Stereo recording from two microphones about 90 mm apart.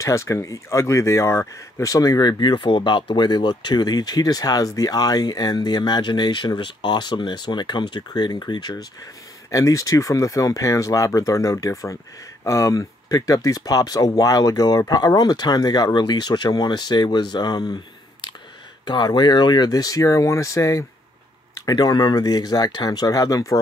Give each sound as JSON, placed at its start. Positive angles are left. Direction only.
{"t": 0.0, "sound": "speech", "side_deg": 35}
{"t": 9.5, "sound": "speech", "side_deg": 35}
{"t": 18.9, "sound": "speech", "side_deg": 55}